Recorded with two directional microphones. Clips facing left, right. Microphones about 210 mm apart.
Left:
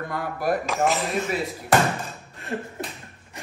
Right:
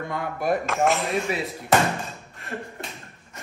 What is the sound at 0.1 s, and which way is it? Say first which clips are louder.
Speech: even; 5° left (ahead or behind).